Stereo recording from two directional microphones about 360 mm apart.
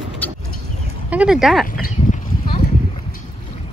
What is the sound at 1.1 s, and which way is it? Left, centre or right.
Speech, centre.